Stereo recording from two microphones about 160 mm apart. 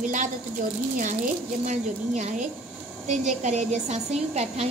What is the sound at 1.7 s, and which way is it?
Speech, 50° right (ahead or behind).